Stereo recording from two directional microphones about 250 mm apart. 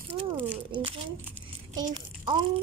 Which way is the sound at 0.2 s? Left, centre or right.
Centre.